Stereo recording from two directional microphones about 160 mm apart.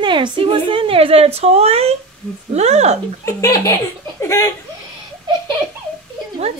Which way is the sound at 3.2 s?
20° left (ahead or behind).